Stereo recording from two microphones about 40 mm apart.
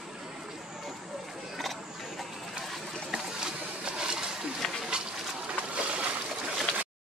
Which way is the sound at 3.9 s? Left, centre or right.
Centre.